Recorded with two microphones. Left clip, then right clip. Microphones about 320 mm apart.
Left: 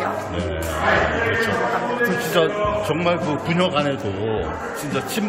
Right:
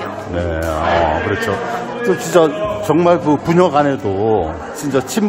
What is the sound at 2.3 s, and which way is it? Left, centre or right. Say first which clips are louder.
A man's voice: right 8 dB; right.